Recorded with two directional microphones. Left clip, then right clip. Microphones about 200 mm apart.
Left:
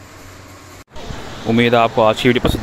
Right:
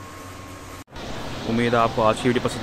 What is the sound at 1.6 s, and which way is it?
Speech, 40° left (ahead or behind).